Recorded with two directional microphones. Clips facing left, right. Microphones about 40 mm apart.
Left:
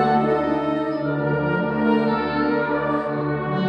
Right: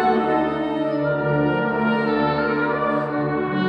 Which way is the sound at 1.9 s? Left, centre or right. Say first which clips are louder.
Right 1 dB; centre.